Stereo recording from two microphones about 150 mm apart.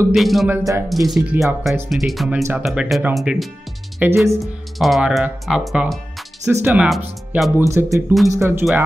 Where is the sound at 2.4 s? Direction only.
10° right (ahead or behind).